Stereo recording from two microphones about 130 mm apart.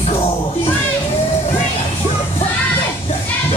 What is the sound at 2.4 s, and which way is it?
Music, 50° left (ahead or behind).